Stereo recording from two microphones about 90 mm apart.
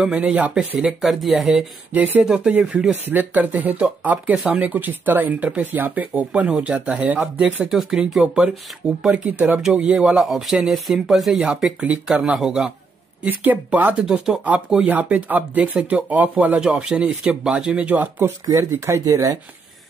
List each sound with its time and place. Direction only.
0.0 s speech: 15° right (ahead or behind)
0.7 s speech: centre (ahead or behind)
2.2 s speech: 15° right (ahead or behind)
11.8 s speech: 15° right (ahead or behind)
13.2 s speech: 20° right (ahead or behind)
18.4 s speech: 30° right (ahead or behind)